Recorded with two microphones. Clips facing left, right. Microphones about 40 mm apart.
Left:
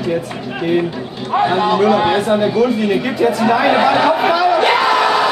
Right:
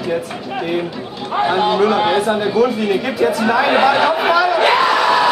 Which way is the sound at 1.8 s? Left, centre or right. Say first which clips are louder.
Left 1 dB; centre.